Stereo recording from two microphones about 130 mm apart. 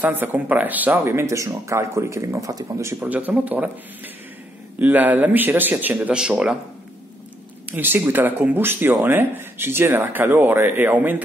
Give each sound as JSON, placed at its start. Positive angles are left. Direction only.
{"t": 0.0, "sound": "speech", "side_deg": -15}
{"t": 7.6, "sound": "speech", "side_deg": -15}